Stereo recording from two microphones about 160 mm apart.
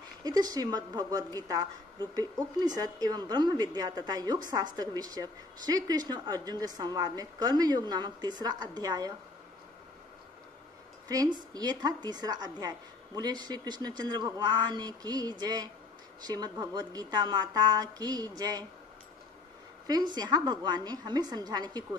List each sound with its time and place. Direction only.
0.2 s a woman's voice: 25° right (ahead or behind)
11.1 s a woman's voice: 25° right (ahead or behind)
19.9 s a woman's voice: 25° right (ahead or behind)